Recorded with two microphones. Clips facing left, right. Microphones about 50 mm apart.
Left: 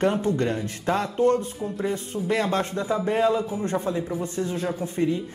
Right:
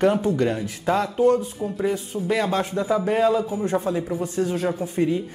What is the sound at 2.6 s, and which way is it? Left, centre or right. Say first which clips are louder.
Speech: right 3 dB; right.